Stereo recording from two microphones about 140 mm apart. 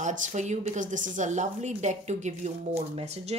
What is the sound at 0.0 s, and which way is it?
A woman's voice, 65° right (ahead or behind).